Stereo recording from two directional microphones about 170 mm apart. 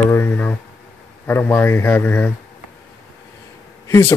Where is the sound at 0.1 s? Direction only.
15° left (ahead or behind).